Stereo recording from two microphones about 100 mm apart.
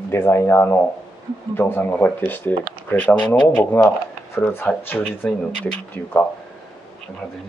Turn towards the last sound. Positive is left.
turn(degrees=15)  # may be behind; listen again after turning